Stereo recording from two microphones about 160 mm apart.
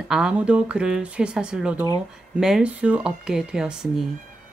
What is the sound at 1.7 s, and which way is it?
Speech, 25° left (ahead or behind).